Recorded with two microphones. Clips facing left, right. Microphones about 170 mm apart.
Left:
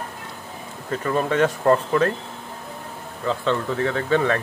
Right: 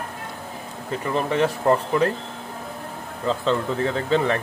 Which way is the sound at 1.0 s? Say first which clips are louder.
Left 1 dB; 15° right (ahead or behind).